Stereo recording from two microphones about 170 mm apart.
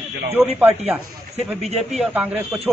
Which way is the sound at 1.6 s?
40° right (ahead or behind).